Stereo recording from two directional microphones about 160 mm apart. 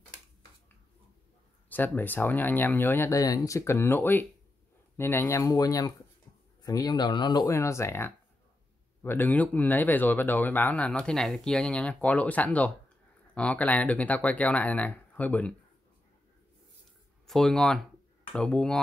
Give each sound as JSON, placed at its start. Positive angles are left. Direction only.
{"t": 1.7, "sound": "speech", "side_deg": 10}
{"t": 17.3, "sound": "speech", "side_deg": 0}